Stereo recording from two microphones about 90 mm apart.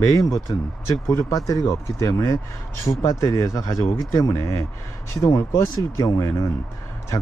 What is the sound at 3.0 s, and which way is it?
Speech, 35° left (ahead or behind).